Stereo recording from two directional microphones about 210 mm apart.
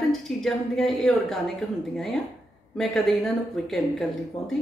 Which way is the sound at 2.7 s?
Centre (ahead or behind).